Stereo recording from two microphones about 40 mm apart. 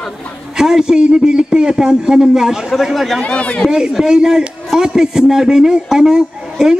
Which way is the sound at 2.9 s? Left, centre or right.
Centre.